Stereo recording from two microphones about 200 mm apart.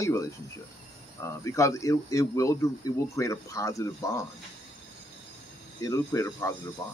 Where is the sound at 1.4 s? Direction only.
15° left (ahead or behind).